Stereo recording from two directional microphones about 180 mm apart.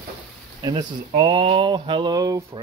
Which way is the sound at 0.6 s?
25° right (ahead or behind).